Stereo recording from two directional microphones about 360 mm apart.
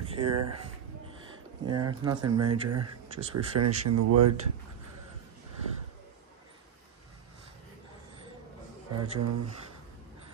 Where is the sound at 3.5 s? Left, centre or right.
Right.